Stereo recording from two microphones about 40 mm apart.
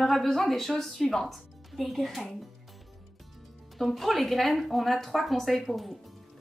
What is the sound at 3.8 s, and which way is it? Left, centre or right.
A woman's voice, centre.